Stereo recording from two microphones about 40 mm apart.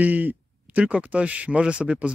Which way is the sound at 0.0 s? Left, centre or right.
Right.